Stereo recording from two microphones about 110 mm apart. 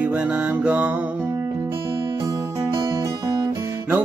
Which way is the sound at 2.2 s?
35° right (ahead or behind).